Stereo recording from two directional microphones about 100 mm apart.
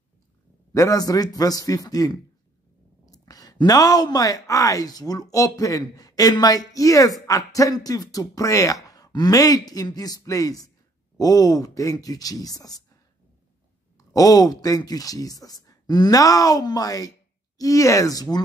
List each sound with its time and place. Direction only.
0.7 s speech: 35° left (ahead or behind)